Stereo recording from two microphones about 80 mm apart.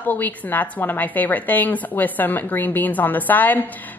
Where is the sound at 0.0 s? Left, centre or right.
Left.